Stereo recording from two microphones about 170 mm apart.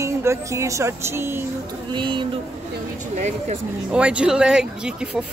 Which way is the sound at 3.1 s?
45° right (ahead or behind).